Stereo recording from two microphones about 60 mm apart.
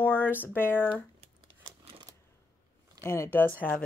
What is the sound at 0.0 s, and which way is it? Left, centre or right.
Speech, left.